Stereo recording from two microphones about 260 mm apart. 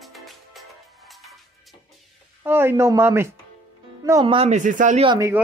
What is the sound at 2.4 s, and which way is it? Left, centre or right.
A woman's voice, centre.